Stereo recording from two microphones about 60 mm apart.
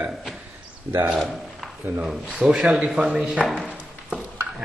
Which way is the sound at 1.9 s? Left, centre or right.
Right.